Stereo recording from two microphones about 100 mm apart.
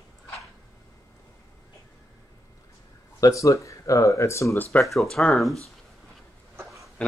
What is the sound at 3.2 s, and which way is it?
Speech, 35° left (ahead or behind).